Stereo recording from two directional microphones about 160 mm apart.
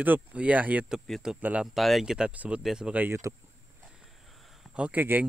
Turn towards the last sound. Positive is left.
turn(degrees=-10)  # may be behind; listen again after turning